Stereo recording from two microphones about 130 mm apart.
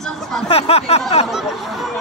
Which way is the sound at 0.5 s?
50° left (ahead or behind).